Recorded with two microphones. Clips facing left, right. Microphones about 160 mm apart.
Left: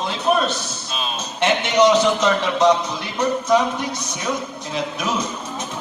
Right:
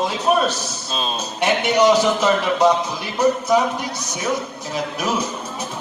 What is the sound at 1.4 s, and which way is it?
Speech, 10° right (ahead or behind).